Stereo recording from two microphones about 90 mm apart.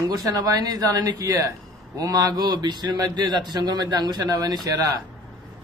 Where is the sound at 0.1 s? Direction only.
50° right (ahead or behind).